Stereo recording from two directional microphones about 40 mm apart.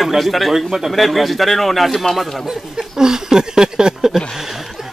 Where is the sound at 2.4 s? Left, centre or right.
Centre.